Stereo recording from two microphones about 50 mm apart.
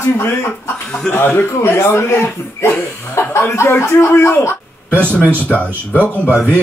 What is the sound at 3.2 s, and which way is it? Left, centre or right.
Speech, left.